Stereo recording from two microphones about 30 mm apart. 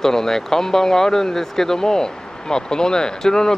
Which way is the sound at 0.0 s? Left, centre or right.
Centre.